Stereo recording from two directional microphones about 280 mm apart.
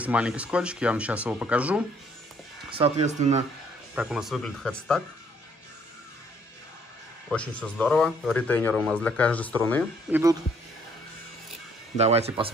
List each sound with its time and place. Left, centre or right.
0.0 s a man's voice: centre
2.7 s speech: right
3.9 s a man's voice: centre
7.2 s a man's voice: centre
12.0 s speech: right